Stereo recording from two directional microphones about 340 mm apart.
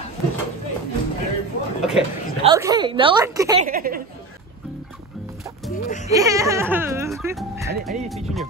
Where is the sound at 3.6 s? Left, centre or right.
Right.